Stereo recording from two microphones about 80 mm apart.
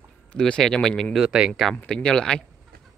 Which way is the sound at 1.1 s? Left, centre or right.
Centre.